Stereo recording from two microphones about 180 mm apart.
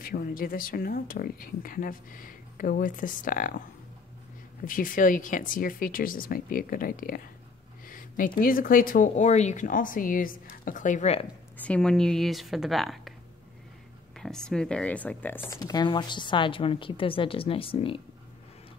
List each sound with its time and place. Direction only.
0.0 s speech: 55° left (ahead or behind)
4.6 s speech: 50° left (ahead or behind)
7.8 s a sound: 50° left (ahead or behind)
8.4 s speech: 50° left (ahead or behind)
11.5 s speech: 5° left (ahead or behind)
14.1 s speech: 5° left (ahead or behind); by 18.0 s 30° left (ahead or behind)